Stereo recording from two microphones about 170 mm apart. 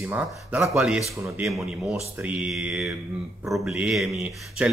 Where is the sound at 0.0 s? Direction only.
10° right (ahead or behind).